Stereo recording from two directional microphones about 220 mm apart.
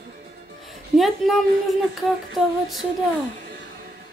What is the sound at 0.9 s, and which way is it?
Speech, centre (ahead or behind).